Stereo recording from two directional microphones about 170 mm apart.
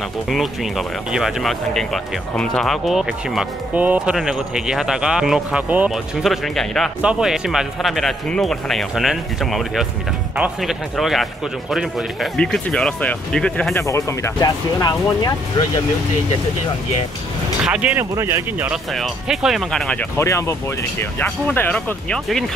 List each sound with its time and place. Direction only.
0.3 s speech: centre (ahead or behind)
13.7 s speech: 20° left (ahead or behind)
17.6 s speech: 5° right (ahead or behind)
18.9 s speech: centre (ahead or behind)